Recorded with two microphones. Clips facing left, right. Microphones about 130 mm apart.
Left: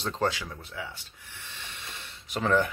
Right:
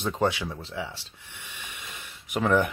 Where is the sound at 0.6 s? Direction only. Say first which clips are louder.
Right 4 dB; 30° right (ahead or behind).